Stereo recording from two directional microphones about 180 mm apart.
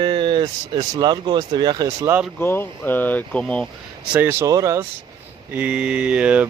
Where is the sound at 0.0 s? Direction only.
25° right (ahead or behind).